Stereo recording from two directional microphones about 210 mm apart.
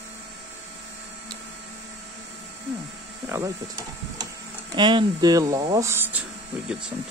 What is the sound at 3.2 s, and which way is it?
Speech, 15° right (ahead or behind).